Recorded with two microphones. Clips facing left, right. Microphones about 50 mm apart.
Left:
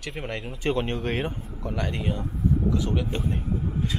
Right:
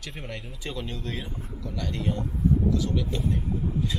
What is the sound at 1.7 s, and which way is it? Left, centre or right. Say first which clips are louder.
Speech: left 1 dB; left.